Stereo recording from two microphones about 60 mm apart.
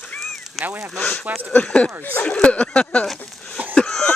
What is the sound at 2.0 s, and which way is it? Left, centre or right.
Speech, left.